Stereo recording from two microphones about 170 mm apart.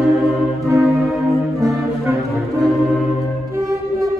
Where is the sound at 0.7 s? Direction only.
15° right (ahead or behind).